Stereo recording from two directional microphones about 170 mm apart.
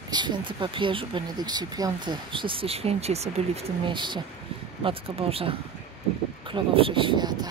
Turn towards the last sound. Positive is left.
turn(degrees=-25)  # may be behind; listen again after turning